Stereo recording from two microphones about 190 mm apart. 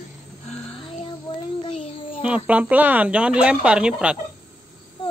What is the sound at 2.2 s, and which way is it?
Speech, 5° right (ahead or behind).